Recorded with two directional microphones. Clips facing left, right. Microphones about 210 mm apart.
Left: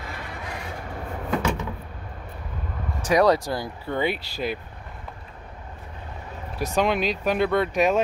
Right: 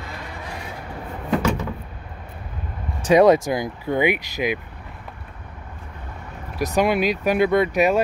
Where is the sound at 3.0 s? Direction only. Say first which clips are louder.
Right 5 dB; 20° right (ahead or behind).